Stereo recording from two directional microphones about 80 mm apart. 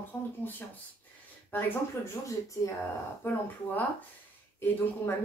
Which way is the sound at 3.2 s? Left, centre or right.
Left.